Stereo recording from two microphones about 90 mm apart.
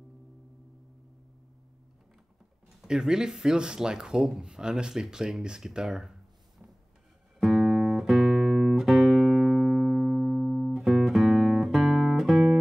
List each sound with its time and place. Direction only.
2.7 s speech: 5° right (ahead or behind)
7.3 s music: centre (ahead or behind)